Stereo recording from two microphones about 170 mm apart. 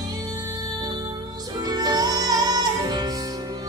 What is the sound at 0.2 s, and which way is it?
Music, 25° right (ahead or behind).